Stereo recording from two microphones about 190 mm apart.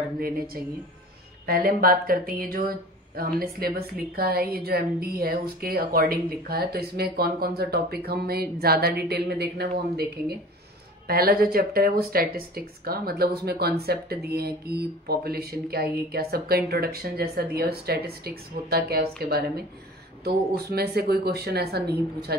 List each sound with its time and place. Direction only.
0.6 s a woman's voice: 50° right (ahead or behind)